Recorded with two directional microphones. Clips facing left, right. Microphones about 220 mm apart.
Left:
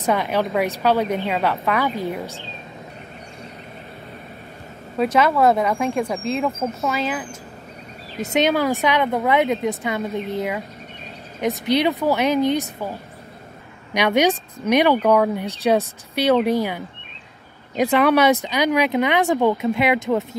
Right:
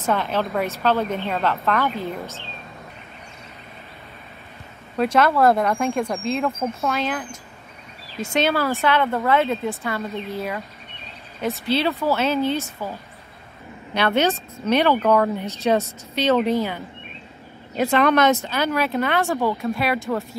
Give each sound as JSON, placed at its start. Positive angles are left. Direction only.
{"t": 0.0, "sound": "speech", "side_deg": 15}
{"t": 4.9, "sound": "speech", "side_deg": 0}
{"t": 8.3, "sound": "speech", "side_deg": 15}
{"t": 13.9, "sound": "speech", "side_deg": 15}
{"t": 17.9, "sound": "speech", "side_deg": 10}